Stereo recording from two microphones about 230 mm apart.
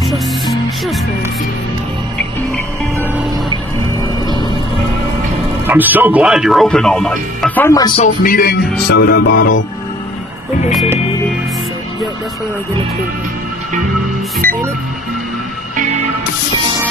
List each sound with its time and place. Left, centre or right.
0.0 s music: centre
5.7 s speech: centre
8.0 s music: left
14.4 s music: centre